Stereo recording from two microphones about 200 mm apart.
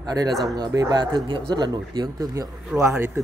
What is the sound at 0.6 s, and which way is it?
Speech, 20° right (ahead or behind).